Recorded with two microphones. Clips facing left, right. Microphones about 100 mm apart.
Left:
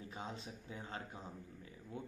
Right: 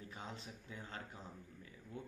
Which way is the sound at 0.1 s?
20° left (ahead or behind).